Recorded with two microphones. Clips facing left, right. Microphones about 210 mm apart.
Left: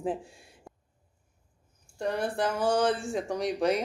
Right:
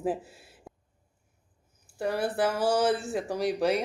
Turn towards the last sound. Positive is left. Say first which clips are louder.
# right 1 dB
turn(degrees=0)  # may be behind; listen again after turning